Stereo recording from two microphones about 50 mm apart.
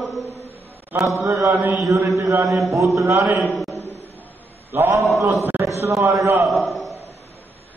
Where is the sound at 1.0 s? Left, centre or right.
Right.